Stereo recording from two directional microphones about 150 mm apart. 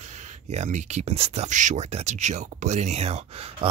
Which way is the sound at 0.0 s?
50° right (ahead or behind).